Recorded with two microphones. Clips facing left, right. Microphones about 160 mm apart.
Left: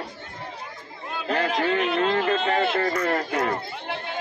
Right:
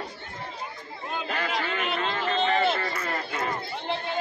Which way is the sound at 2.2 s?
60° left (ahead or behind).